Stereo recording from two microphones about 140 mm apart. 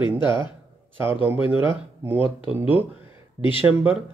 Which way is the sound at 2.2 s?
40° left (ahead or behind).